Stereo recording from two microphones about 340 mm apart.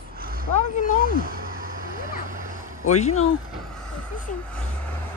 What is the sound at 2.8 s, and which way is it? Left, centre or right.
Speech, centre.